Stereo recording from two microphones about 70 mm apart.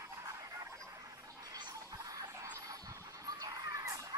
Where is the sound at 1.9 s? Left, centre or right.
Right.